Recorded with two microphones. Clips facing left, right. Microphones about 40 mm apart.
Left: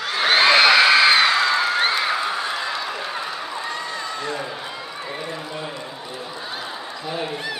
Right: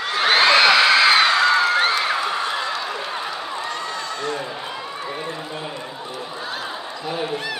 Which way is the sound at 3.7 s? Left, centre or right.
Centre.